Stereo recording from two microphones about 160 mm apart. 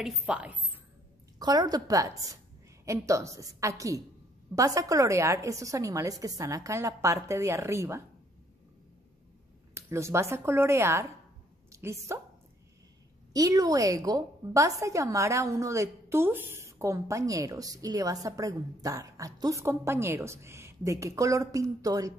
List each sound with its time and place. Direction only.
0.0 s speech: 10° right (ahead or behind)
1.4 s a woman's voice: 25° right (ahead or behind)
9.8 s a woman's voice: 15° right (ahead or behind)
13.3 s a woman's voice: 20° right (ahead or behind)